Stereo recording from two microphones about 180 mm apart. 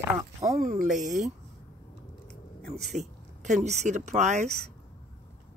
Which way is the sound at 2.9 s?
40° right (ahead or behind).